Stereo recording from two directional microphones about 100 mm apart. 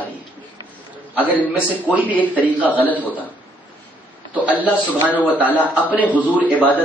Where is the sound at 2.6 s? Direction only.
15° left (ahead or behind).